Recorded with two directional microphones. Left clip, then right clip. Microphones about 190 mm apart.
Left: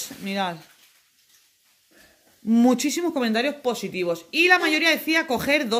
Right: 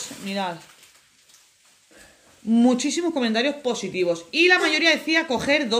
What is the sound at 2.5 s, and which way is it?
Speech, 45° left (ahead or behind).